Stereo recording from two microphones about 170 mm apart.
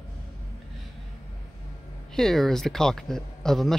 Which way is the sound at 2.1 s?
Centre (ahead or behind).